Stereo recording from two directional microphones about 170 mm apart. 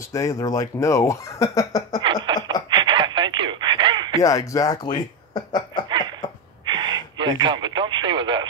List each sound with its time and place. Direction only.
0.1 s speech: 20° left (ahead or behind)
2.2 s a sound: 25° right (ahead or behind)
2.8 s radio: 25° right (ahead or behind)
4.2 s speech: 20° left (ahead or behind)
5.9 s a sound: 25° right (ahead or behind)
6.7 s radio: 25° right (ahead or behind)